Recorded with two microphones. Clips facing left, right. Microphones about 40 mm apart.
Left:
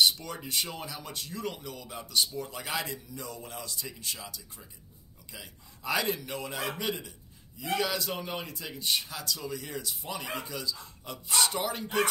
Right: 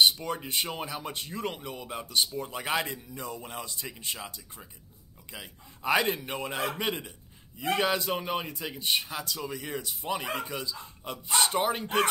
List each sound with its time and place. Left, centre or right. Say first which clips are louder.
0.0 s a man's voice: right 2 dB; right